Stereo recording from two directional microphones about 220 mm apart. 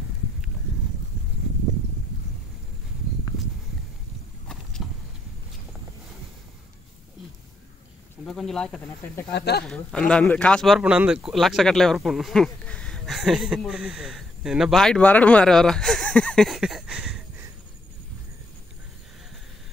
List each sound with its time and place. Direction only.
4.8 s a sound: centre (ahead or behind)
8.3 s speech: centre (ahead or behind)
9.3 s speech: 45° left (ahead or behind)
9.7 s speech: 5° left (ahead or behind)